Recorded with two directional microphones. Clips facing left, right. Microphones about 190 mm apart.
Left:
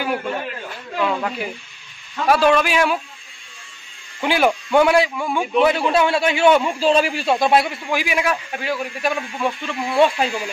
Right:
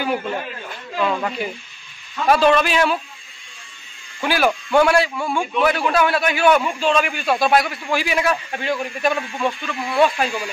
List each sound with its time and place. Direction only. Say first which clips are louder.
0.0 s a man's voice: even; centre (ahead or behind)
4.2 s a man's voice: left 1 dB; 20° left (ahead or behind)
7.8 s a man's voice: right 1 dB; 15° left (ahead or behind)
9.9 s a man's voice: left 1 dB; 25° left (ahead or behind)